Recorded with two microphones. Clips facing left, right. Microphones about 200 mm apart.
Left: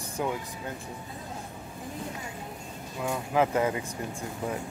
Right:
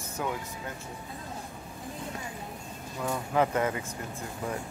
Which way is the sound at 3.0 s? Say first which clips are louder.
Left 1 dB; 10° left (ahead or behind).